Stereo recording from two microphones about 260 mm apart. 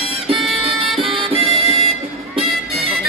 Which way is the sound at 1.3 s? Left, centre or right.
Right.